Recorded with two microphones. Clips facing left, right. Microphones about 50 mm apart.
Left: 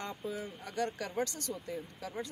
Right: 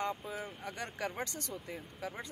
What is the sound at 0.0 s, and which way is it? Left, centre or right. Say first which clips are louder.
Speech: right 1 dB; centre.